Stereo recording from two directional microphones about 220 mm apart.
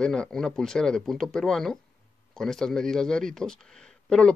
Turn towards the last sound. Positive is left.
turn(degrees=5)  # may be behind; listen again after turning